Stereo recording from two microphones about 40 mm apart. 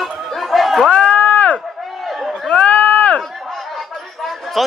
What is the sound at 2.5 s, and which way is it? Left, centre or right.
Run, left.